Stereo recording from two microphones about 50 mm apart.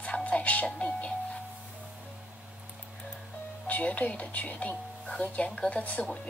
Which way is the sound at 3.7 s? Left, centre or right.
Left.